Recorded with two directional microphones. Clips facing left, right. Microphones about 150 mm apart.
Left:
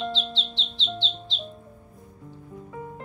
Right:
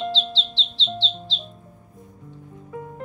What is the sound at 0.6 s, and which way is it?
Squawk, 30° right (ahead or behind).